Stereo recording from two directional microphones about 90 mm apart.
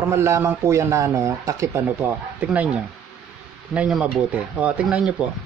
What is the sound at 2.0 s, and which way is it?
Speech, 15° right (ahead or behind).